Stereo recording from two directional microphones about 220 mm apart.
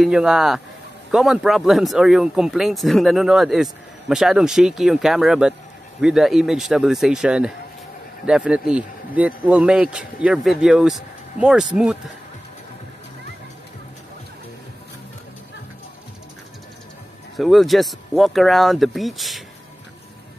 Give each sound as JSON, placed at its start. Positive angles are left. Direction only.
{"t": 0.0, "sound": "speech", "side_deg": -5}
{"t": 17.4, "sound": "speech", "side_deg": 0}